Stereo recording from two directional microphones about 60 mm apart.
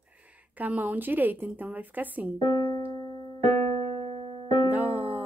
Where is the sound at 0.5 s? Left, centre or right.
Right.